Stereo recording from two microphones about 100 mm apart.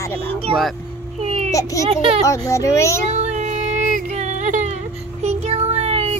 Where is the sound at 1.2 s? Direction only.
90° right.